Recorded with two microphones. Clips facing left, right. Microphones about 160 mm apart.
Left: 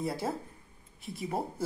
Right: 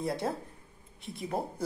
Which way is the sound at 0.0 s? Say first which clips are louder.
Right 1 dB; centre (ahead or behind).